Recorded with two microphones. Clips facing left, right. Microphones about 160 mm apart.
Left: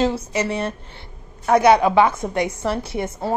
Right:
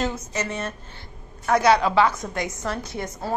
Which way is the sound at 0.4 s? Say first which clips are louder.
Left 5 dB; 30° left (ahead or behind).